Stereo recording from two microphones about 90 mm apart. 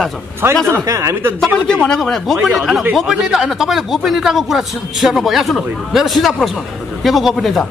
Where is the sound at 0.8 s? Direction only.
35° right (ahead or behind).